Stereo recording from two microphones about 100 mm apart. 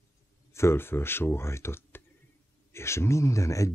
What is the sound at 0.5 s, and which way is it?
Speech, 25° left (ahead or behind).